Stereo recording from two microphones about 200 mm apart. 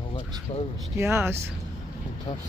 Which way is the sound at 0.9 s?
10° right (ahead or behind).